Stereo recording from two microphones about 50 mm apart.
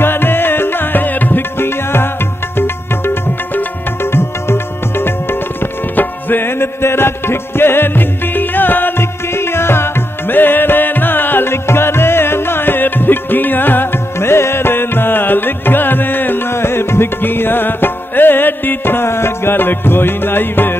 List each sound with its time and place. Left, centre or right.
0.0 s music: left
1.6 s music: left
4.0 s music: left